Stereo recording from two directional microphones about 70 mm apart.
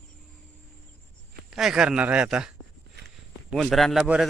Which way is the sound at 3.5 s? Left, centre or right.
Centre.